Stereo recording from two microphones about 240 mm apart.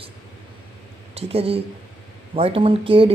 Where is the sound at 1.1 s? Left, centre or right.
Right.